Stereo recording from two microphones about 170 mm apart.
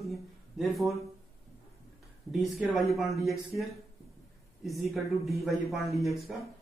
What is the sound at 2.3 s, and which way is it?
Speech, centre (ahead or behind).